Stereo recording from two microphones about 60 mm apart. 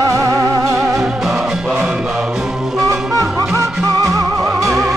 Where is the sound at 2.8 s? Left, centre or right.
Right.